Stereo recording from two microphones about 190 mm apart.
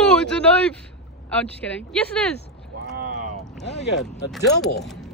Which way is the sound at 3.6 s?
65° left (ahead or behind).